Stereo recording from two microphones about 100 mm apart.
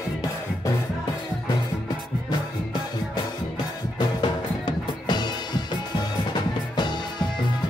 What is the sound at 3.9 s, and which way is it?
Music, 45° left (ahead or behind).